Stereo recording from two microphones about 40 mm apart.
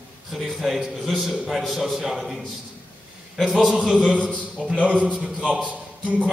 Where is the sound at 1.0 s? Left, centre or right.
Centre.